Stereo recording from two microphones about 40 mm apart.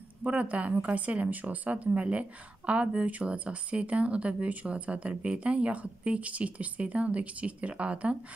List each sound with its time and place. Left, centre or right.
0.2 s speech: right